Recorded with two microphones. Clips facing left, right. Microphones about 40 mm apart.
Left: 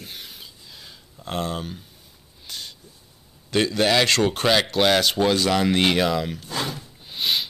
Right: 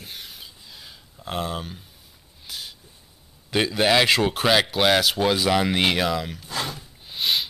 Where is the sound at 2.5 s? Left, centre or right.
Centre.